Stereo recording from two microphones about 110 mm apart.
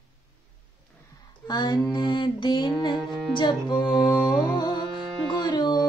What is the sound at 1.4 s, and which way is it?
Music, 40° left (ahead or behind).